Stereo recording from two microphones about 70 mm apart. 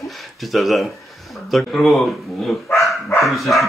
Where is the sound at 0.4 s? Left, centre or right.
Centre.